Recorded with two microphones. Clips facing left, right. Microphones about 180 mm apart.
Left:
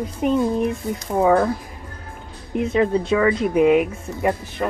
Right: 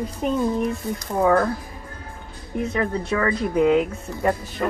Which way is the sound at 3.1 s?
20° left (ahead or behind).